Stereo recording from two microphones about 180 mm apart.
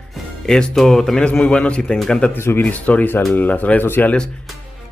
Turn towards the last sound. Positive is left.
turn(degrees=10)  # may be behind; listen again after turning